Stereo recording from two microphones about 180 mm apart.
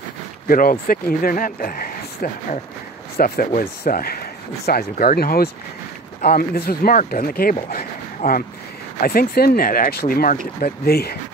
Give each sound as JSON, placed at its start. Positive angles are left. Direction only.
{"t": 0.5, "sound": "speech", "side_deg": 50}
{"t": 7.7, "sound": "a sound", "side_deg": 50}
{"t": 9.0, "sound": "speech", "side_deg": 55}